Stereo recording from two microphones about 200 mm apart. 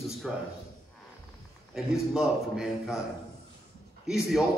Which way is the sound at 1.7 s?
Centre (ahead or behind).